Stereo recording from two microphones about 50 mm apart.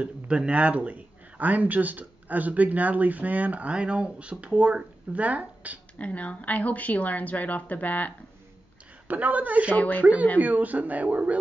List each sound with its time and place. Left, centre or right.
0.0 s speech: right
5.9 s speech: left
9.0 s speech: right
9.8 s speech: left
10.4 s speech: right